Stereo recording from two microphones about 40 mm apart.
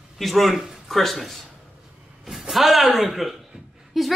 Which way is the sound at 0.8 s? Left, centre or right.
Centre.